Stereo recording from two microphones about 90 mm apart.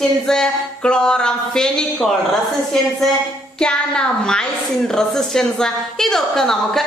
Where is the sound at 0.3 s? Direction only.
10° left (ahead or behind).